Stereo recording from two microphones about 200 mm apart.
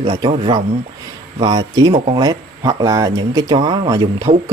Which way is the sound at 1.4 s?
20° right (ahead or behind).